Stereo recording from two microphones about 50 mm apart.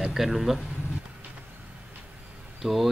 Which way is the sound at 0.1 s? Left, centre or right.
Centre.